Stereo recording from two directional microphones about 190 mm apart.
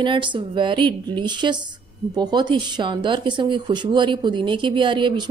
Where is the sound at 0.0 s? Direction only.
25° right (ahead or behind).